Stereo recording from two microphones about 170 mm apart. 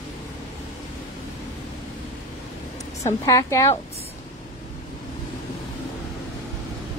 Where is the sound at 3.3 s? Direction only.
20° left (ahead or behind).